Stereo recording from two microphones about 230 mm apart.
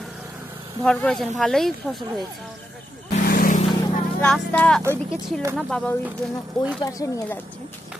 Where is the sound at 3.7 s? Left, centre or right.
Centre.